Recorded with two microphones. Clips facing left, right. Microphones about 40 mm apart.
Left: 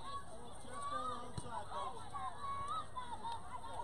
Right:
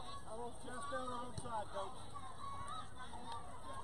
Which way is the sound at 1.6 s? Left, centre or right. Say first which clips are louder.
Left 2 dB; left.